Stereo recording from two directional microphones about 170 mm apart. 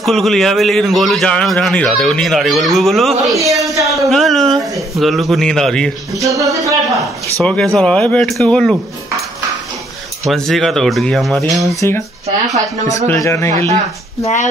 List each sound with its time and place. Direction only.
0.0 s a man's voice: centre (ahead or behind)
3.7 s a man's voice: 20° right (ahead or behind)
4.1 s a man's voice: centre (ahead or behind)
6.1 s a man's voice: 20° right (ahead or behind)
7.4 s a man's voice: 5° left (ahead or behind)
10.2 s a man's voice: centre (ahead or behind)
11.8 s speech: 15° left (ahead or behind)
13.1 s speech: 15° left (ahead or behind)
14.2 s speech: 45° left (ahead or behind)